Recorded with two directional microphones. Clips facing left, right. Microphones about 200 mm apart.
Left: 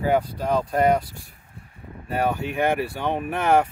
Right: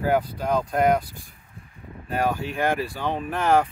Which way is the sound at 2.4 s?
60° left (ahead or behind).